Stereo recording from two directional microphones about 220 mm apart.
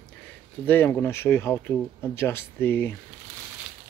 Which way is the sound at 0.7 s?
10° left (ahead or behind).